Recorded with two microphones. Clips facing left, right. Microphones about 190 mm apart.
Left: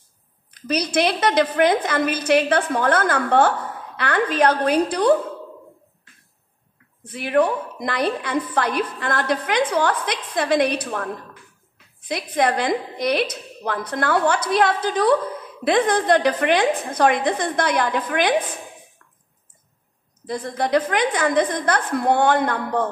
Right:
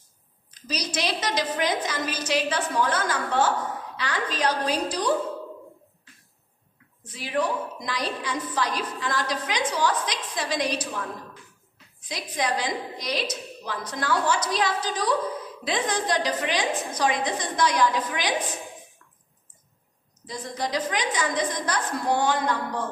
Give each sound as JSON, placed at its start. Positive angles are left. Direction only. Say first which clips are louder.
{"t": 0.5, "sound": "a woman's voice", "louder": "left 8 dB", "side_deg": 55}
{"t": 7.0, "sound": "a woman's voice", "louder": "left 8 dB", "side_deg": 55}
{"t": 20.2, "sound": "a woman's voice", "louder": "left 7 dB", "side_deg": 55}